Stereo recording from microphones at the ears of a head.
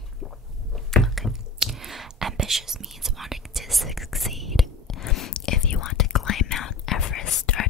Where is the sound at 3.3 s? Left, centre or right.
Centre.